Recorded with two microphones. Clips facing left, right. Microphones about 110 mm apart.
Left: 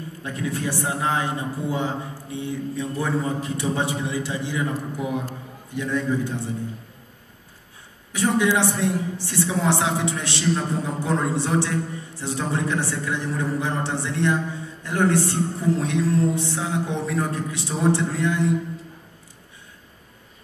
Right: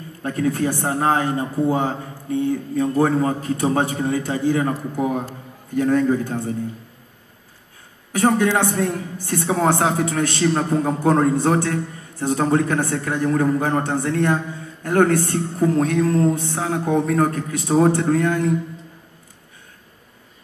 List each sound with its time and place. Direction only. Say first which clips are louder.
0.2 s a woman's voice: right 7 dB; 45° right (ahead or behind)
8.1 s a woman's voice: right 3 dB; 50° right (ahead or behind)